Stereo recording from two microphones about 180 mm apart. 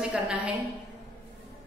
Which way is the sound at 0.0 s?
5° right (ahead or behind).